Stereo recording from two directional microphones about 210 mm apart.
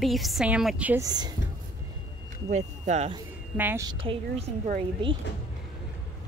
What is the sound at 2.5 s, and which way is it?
Speech, 35° right (ahead or behind).